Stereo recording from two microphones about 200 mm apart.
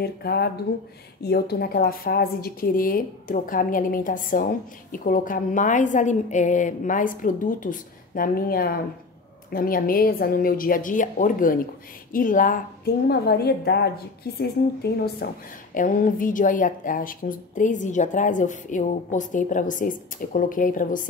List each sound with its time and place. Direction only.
0.0 s a woman's voice: 50° left (ahead or behind)